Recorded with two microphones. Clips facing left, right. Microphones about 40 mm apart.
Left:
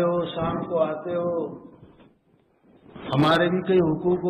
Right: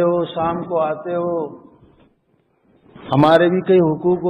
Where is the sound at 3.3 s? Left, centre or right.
Centre.